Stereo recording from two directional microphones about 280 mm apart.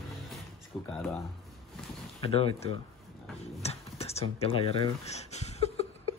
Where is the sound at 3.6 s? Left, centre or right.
Left.